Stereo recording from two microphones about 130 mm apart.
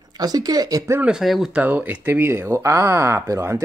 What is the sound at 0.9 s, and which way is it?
Speech, 5° right (ahead or behind).